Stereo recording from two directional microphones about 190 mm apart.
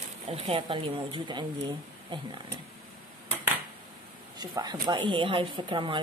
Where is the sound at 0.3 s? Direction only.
30° right (ahead or behind).